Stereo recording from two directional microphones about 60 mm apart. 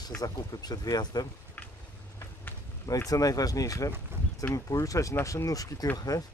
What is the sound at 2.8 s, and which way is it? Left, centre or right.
Speech, left.